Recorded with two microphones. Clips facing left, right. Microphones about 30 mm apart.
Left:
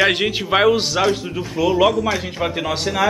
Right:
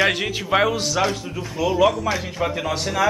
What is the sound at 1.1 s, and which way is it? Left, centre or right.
Speech, centre.